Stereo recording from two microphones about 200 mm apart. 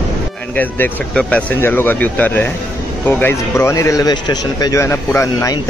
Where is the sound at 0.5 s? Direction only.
10° left (ahead or behind).